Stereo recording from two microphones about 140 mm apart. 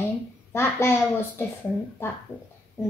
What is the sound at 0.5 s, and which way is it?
Speech, 15° left (ahead or behind).